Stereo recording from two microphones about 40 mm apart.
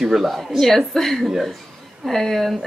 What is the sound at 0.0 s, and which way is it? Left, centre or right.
Speech, centre.